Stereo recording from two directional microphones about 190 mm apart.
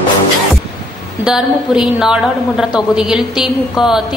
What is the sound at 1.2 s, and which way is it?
A woman's voice, 5° right (ahead or behind).